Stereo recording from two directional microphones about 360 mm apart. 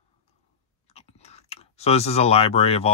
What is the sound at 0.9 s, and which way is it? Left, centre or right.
Speech, centre.